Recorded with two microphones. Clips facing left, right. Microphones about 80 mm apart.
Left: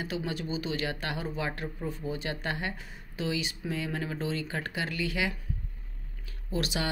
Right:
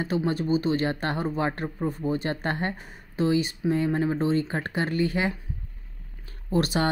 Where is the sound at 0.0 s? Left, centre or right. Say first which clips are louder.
Right 8 dB; right.